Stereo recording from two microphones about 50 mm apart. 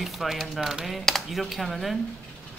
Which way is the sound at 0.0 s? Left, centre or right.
Centre.